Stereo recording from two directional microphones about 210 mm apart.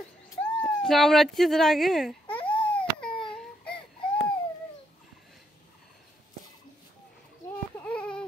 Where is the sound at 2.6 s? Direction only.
5° left (ahead or behind).